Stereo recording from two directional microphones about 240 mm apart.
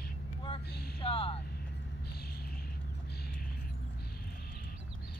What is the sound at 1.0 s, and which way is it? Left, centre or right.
Vehicle, left.